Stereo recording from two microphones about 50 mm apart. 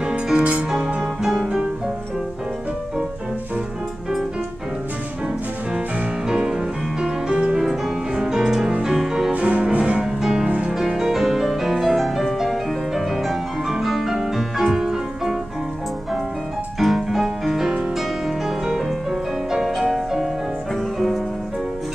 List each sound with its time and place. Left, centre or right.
0.1 s music: right
0.7 s music: centre
6.2 s music: centre
9.3 s music: right
10.2 s music: centre
16.8 s music: centre
19.5 s music: centre